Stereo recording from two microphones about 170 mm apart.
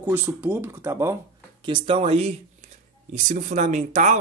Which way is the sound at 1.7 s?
35° right (ahead or behind).